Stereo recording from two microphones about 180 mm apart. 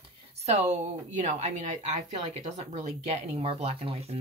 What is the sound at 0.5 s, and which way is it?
Speech, 40° right (ahead or behind).